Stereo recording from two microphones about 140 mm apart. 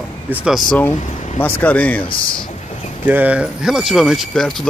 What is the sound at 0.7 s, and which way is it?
Speech, 10° left (ahead or behind).